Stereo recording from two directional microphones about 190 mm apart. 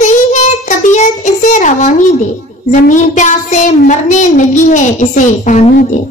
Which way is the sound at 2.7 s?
40° left (ahead or behind).